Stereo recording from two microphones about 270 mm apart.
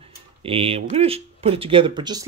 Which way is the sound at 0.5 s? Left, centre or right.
Right.